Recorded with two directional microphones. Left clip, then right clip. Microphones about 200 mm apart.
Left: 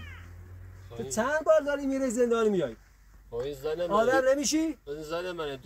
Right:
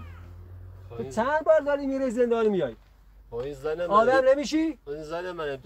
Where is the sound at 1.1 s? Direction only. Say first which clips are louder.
Right 2 dB; 20° left (ahead or behind).